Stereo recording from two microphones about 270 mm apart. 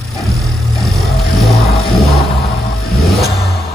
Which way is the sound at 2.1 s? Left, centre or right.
Left.